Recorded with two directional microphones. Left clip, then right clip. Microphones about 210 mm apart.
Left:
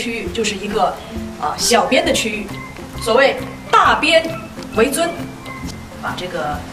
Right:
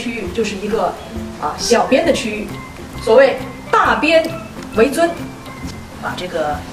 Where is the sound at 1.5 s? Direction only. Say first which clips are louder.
Right 1 dB; 10° left (ahead or behind).